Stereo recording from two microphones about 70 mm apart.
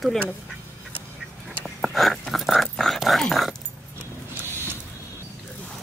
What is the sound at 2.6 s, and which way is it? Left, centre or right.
Dog, centre.